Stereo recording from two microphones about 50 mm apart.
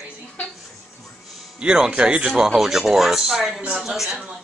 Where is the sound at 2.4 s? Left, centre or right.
Centre.